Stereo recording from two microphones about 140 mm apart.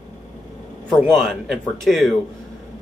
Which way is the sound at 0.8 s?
5° left (ahead or behind).